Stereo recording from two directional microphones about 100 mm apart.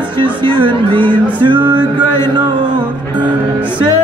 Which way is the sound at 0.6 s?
55° right (ahead or behind).